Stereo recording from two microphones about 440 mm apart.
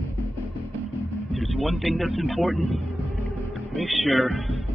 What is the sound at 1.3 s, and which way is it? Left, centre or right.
Speech, centre.